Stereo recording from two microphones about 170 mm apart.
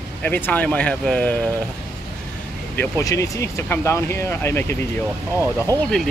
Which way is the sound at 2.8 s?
15° left (ahead or behind).